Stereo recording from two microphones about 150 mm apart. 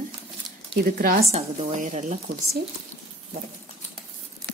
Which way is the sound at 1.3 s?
50° right (ahead or behind).